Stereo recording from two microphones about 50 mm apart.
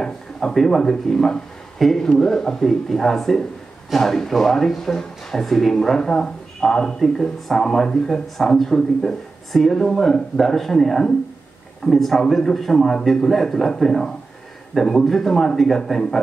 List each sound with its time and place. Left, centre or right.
0.0 s a man's voice: centre